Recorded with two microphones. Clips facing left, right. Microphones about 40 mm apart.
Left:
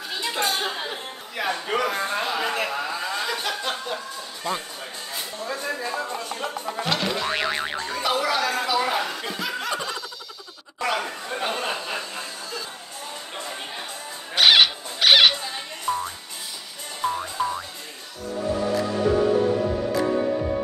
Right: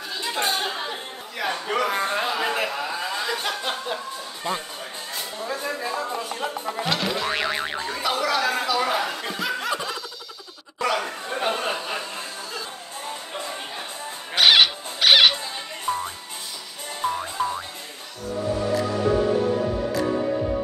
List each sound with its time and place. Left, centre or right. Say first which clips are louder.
0.6 s music: even; centre
1.9 s a sound: right 1 dB; centre
2.3 s chuckle: even; centre
5.4 s boing: even; centre
8.0 s chatter: even; centre
8.6 s chuckle: even; centre
11.2 s a sound: right 3 dB; centre
14.3 s a sound: even; centre
15.9 s music: left 1 dB; right
17.0 s music: even; centre